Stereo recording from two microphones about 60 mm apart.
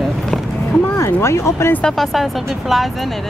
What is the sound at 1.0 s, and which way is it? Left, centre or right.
Speech, left.